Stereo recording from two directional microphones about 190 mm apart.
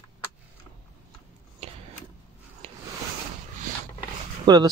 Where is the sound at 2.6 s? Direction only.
30° right (ahead or behind).